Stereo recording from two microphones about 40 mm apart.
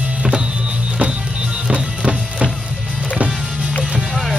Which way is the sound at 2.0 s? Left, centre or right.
Right.